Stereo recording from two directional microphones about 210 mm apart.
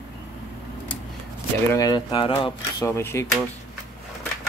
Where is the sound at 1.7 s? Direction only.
20° left (ahead or behind).